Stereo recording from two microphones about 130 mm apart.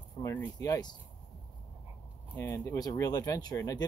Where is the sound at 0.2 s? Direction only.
20° left (ahead or behind).